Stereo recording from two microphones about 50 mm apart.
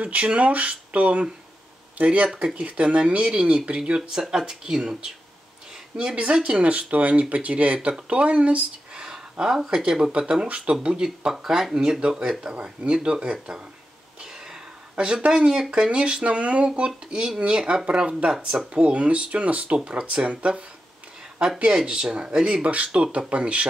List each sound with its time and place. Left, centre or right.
0.0 s speech: right
5.9 s speech: right
8.1 s a sound: right
9.7 s speech: centre
10.3 s speech: right
11.1 s speech: centre
14.2 s a sound: centre
15.2 s speech: centre
21.7 s speech: centre